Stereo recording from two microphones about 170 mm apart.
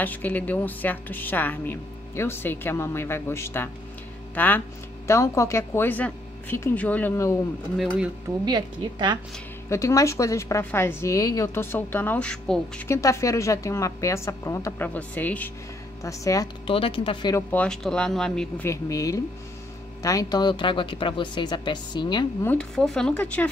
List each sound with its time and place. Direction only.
0.0 s a woman's voice: 10° left (ahead or behind)
7.7 s speech: centre (ahead or behind)
8.5 s a woman's voice: 25° right (ahead or behind)
9.7 s a woman's voice: 15° left (ahead or behind)
12.8 s a woman's voice: 15° left (ahead or behind)
16.6 s speech: 30° left (ahead or behind)
17.5 s speech: 5° left (ahead or behind)
18.7 s a woman's voice: 20° left (ahead or behind)
22.4 s a woman's voice: 10° left (ahead or behind)